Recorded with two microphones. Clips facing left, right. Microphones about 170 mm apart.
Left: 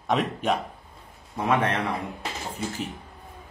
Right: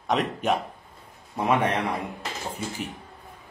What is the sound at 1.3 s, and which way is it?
Speech, 20° right (ahead or behind).